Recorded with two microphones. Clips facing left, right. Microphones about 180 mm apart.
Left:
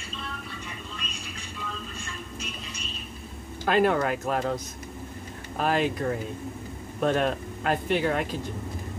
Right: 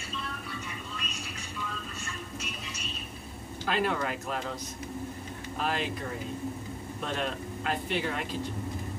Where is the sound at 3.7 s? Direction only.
50° left (ahead or behind).